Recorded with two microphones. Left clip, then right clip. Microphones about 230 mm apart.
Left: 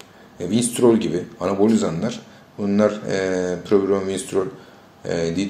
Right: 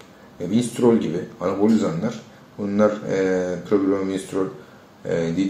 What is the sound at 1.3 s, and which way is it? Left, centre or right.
Speech, left.